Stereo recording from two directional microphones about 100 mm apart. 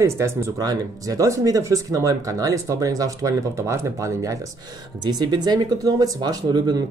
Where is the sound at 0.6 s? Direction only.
40° right (ahead or behind).